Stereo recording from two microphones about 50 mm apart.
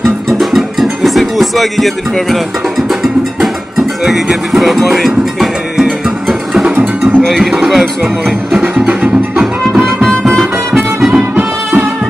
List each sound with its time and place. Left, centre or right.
0.0 s music: centre
7.2 s speech: centre
7.5 s music: centre
8.3 s speech: centre
9.7 s music: centre
11.3 s music: right